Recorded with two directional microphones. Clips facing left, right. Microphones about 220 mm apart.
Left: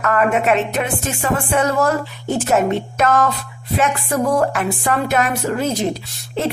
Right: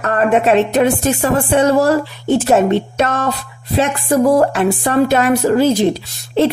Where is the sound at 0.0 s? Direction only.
35° right (ahead or behind).